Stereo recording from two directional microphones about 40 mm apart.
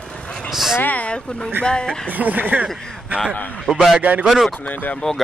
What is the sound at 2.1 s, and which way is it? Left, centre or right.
Speech, right.